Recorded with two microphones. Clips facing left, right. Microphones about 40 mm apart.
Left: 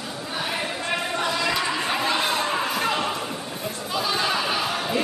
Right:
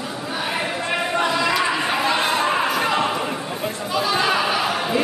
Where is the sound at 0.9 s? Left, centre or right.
Centre.